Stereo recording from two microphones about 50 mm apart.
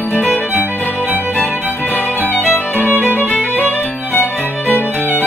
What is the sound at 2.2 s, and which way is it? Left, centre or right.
Music, left.